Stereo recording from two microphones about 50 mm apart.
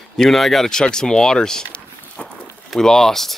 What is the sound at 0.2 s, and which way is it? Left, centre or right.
Speech, centre.